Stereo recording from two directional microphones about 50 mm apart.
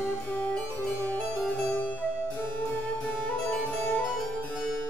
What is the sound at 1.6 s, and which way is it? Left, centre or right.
Music, left.